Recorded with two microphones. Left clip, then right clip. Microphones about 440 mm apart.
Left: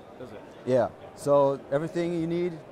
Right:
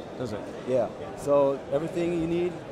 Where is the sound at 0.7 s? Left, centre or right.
Left.